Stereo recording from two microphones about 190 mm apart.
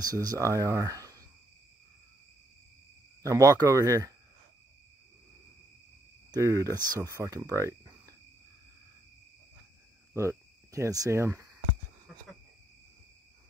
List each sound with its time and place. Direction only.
0.0 s speech: 20° right (ahead or behind)
3.2 s speech: 15° right (ahead or behind)
6.3 s speech: 15° right (ahead or behind)
10.1 s speech: 15° right (ahead or behind)